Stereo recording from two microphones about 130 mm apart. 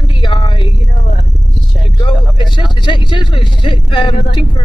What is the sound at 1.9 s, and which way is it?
Speech, 35° left (ahead or behind).